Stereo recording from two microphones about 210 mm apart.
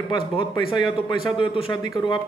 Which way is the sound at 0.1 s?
25° left (ahead or behind).